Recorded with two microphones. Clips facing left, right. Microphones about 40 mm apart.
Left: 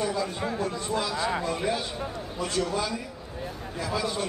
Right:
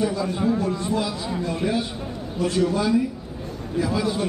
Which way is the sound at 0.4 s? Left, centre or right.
Centre.